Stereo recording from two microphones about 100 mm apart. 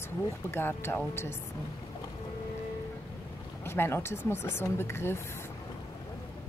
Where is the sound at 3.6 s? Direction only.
25° left (ahead or behind).